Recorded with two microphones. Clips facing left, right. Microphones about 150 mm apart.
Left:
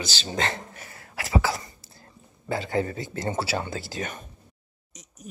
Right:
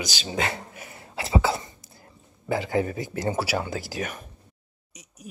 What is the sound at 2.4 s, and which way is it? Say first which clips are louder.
Speech: right 2 dB; 15° right (ahead or behind).